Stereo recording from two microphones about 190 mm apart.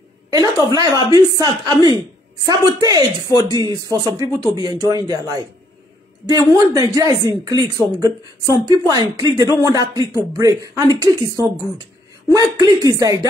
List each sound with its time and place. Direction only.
0.3 s speech: 20° right (ahead or behind)